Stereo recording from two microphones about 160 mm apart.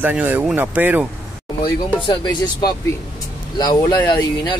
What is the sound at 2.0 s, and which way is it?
Speech, 30° left (ahead or behind).